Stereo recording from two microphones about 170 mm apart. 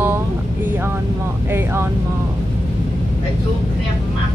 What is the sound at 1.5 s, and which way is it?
Speech, 15° right (ahead or behind).